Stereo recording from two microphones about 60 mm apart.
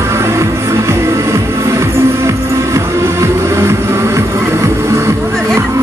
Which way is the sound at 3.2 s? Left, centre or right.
Right.